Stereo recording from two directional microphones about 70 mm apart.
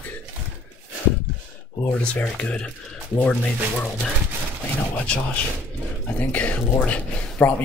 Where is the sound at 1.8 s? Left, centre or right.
Left.